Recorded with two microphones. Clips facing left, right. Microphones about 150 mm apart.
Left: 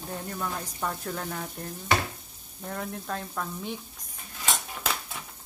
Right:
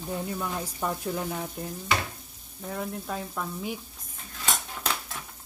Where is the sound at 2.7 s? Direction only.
5° right (ahead or behind).